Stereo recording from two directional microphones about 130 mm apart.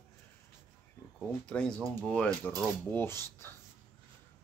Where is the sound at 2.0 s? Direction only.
10° left (ahead or behind).